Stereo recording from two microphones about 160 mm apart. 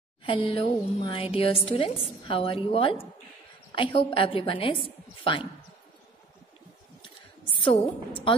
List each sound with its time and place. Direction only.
0.2 s a woman's voice: 35° left (ahead or behind)
7.5 s a woman's voice: 35° left (ahead or behind)